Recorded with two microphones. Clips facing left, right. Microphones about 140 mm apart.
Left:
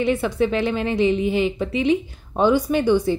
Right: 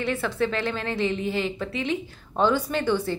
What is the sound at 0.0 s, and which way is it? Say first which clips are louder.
A woman's voice: left 6 dB; 15° left (ahead or behind).